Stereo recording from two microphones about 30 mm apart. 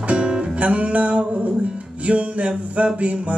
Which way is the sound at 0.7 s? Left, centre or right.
Right.